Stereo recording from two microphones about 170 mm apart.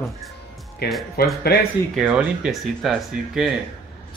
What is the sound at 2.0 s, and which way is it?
Speech, 5° right (ahead or behind).